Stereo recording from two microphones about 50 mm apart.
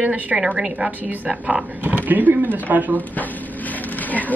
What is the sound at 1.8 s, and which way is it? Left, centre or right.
A woman's voice, right.